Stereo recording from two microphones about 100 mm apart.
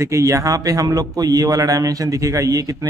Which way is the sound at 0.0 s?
30° right (ahead or behind).